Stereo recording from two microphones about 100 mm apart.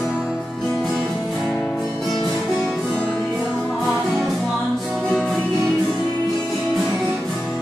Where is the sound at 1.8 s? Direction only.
Centre (ahead or behind).